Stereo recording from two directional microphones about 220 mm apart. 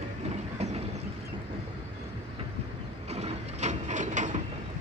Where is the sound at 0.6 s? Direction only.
30° right (ahead or behind).